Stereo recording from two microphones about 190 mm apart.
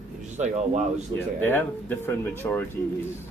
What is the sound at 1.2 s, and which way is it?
Speech, 10° left (ahead or behind).